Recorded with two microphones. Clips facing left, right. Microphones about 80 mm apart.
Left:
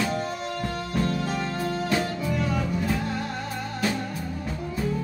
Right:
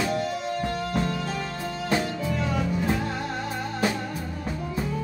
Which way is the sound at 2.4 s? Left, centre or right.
Centre.